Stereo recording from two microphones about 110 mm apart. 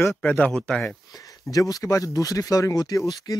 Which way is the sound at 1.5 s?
35° left (ahead or behind).